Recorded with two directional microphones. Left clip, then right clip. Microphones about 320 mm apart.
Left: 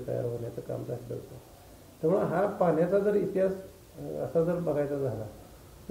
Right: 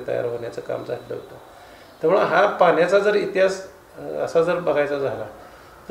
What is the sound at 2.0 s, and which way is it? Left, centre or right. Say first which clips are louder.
A man's voice: right 10 dB; centre.